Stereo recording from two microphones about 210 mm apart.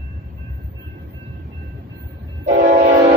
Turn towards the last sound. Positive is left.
turn(degrees=-35)  # may be behind; listen again after turning